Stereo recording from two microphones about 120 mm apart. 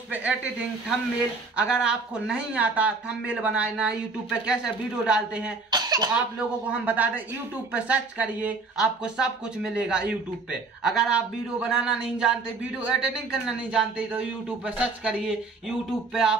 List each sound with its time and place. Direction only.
0.1 s speech: 10° right (ahead or behind)
5.7 s cough: 35° right (ahead or behind)
6.7 s speech: 15° right (ahead or behind)